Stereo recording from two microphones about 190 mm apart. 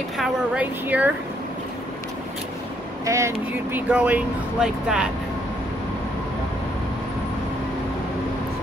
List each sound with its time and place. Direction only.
0.2 s a woman's voice: 10° right (ahead or behind)
3.1 s a woman's voice: 15° right (ahead or behind)